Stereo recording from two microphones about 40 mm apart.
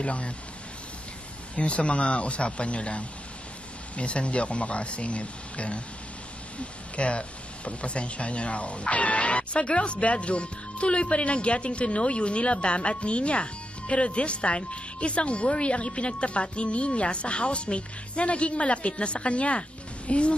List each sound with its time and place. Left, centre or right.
0.0 s speech: left
1.5 s speech: left